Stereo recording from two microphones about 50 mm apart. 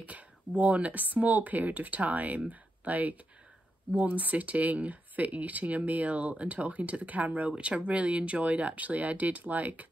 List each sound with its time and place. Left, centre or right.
0.0 s speech: right